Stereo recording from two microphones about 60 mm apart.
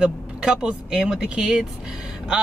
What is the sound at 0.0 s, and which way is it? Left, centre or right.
Speech, centre.